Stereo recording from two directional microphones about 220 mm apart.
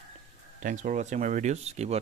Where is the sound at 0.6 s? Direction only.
35° right (ahead or behind).